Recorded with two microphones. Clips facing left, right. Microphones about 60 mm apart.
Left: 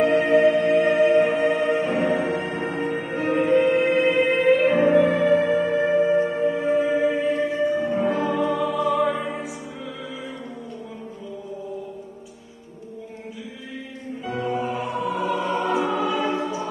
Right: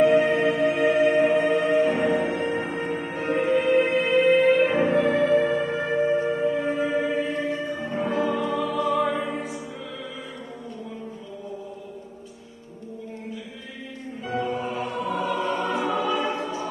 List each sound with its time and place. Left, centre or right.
0.0 s music: centre
6.1 s music: left
6.8 s music: centre
14.2 s music: centre